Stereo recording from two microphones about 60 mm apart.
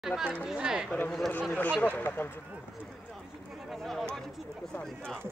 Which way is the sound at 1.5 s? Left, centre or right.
Left.